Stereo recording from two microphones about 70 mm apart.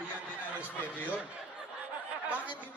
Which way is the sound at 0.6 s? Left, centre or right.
Right.